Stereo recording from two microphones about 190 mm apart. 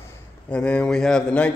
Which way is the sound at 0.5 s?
5° left (ahead or behind).